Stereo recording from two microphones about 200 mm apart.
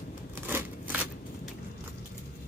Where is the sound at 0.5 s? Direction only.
10° right (ahead or behind).